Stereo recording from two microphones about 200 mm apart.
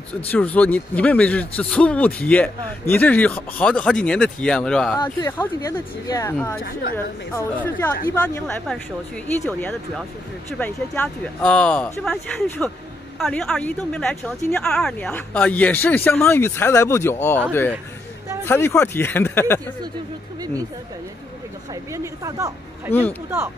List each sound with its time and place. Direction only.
0.3 s a man's voice: 5° left (ahead or behind)
4.9 s speech: 15° left (ahead or behind)
6.3 s a man's voice: 5° left (ahead or behind)
21.9 s a woman's voice: 15° right (ahead or behind)
22.9 s speech: 30° left (ahead or behind)